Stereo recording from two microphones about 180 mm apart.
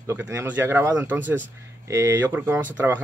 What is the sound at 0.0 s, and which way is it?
Speech, 15° right (ahead or behind).